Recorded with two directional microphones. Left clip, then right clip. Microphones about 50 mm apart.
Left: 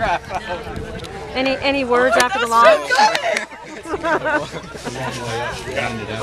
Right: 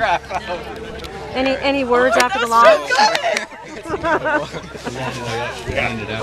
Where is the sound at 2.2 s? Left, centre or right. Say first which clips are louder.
Right 1 dB; centre.